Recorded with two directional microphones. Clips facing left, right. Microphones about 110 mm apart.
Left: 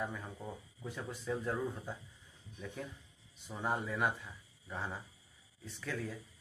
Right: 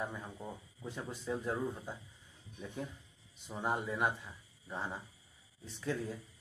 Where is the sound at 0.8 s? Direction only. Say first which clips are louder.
Even; 25° right (ahead or behind).